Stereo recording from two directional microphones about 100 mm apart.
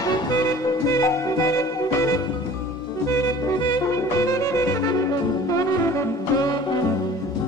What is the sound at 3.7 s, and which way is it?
Music, 35° left (ahead or behind).